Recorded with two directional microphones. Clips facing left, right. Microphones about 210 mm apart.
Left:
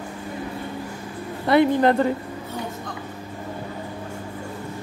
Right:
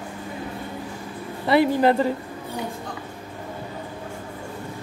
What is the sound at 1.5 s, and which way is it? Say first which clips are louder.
Speech: left 1 dB; 5° right (ahead or behind).